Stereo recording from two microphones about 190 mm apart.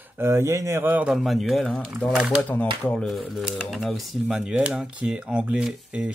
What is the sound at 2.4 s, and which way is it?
Speech, 10° left (ahead or behind).